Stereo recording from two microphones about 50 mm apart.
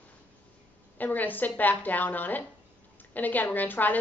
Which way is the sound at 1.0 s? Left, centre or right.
Left.